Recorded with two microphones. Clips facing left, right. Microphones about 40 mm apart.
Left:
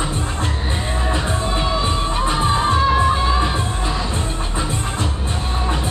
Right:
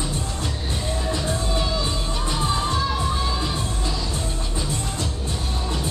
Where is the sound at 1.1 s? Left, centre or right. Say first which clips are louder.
Left 4 dB; left.